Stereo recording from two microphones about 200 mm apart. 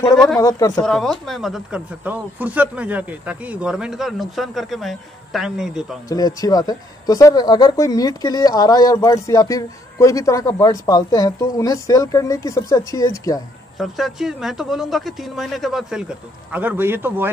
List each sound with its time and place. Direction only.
0.4 s speech: 20° left (ahead or behind)
0.8 s speech: centre (ahead or behind)
6.0 s speech: 20° left (ahead or behind)
13.7 s speech: centre (ahead or behind)